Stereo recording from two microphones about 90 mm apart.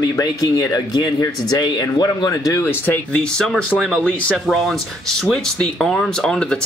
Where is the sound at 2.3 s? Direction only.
35° left (ahead or behind).